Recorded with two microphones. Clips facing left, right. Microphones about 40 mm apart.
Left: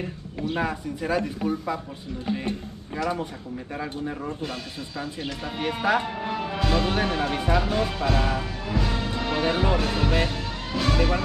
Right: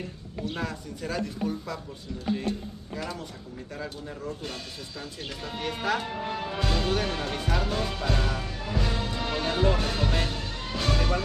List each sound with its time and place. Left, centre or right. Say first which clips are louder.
0.6 s speech: left 6 dB; left
3.0 s speech: left 9 dB; left
4.4 s speech: left 5 dB; centre